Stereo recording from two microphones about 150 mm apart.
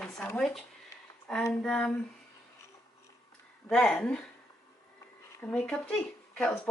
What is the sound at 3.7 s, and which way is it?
Speech, 5° left (ahead or behind).